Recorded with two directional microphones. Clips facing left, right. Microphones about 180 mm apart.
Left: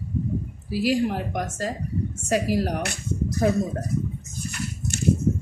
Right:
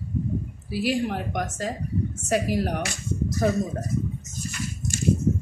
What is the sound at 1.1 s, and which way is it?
Speech, 10° left (ahead or behind).